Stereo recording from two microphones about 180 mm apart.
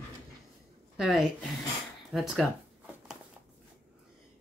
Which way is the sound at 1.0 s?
Centre (ahead or behind).